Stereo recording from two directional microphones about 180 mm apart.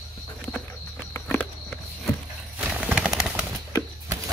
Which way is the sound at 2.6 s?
5° right (ahead or behind).